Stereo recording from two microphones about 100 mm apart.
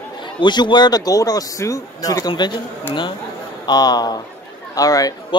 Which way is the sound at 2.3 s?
45° left (ahead or behind).